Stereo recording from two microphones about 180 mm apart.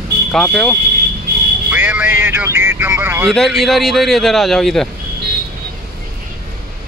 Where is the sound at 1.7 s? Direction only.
10° right (ahead or behind).